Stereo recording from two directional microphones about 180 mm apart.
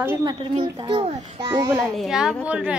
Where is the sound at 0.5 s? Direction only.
30° right (ahead or behind).